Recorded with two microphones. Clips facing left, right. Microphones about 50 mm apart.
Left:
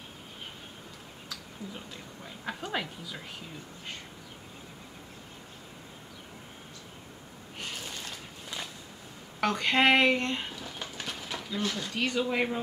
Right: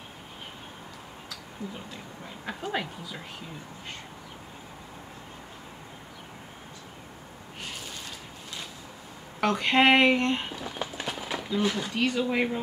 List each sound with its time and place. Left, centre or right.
2.2 s a woman's voice: centre
9.4 s a woman's voice: centre